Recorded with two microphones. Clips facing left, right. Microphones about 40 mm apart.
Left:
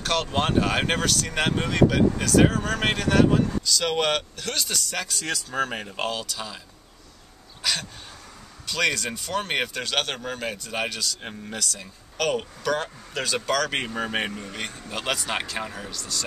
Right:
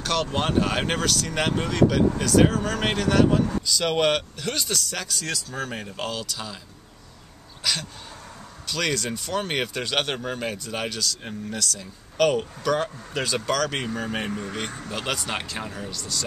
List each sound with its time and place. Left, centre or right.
0.0 s speech: centre
5.2 s speech: left
6.1 s speech: centre
8.6 s speech: centre
9.8 s speech: centre
10.5 s speech: centre
11.0 s speech: left
12.6 s speech: centre
13.7 s speech: left
14.9 s speech: centre